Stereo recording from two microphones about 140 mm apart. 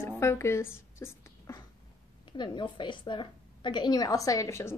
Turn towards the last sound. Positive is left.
turn(degrees=20)  # may be behind; listen again after turning